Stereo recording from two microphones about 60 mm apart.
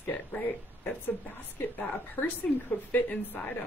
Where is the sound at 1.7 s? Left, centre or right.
Left.